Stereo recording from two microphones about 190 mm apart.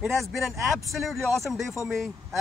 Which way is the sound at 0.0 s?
Centre (ahead or behind).